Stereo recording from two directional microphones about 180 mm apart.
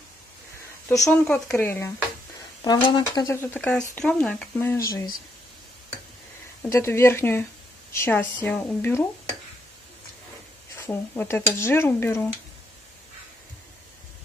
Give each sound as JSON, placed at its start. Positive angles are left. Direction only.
{"t": 1.0, "sound": "speech", "side_deg": 5}
{"t": 2.6, "sound": "speech", "side_deg": 20}
{"t": 3.5, "sound": "speech", "side_deg": 10}
{"t": 6.6, "sound": "speech", "side_deg": 15}
{"t": 10.9, "sound": "speech", "side_deg": 10}